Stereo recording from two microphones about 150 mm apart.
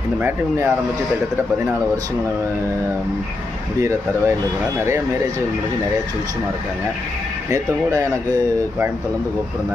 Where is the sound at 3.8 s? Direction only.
20° right (ahead or behind).